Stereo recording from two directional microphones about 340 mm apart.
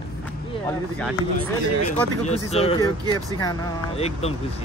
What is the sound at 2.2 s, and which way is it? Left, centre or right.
Speech, centre.